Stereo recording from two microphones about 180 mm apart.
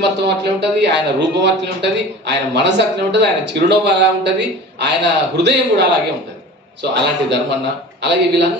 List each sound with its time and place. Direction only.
0.0 s speech: 75° right (ahead or behind)